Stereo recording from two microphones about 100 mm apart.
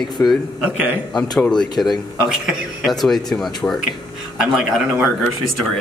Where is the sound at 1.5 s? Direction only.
45° left (ahead or behind).